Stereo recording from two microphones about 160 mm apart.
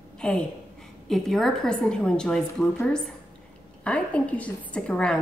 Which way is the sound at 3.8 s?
5° left (ahead or behind).